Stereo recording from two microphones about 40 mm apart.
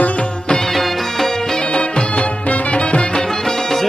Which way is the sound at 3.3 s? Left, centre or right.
Centre.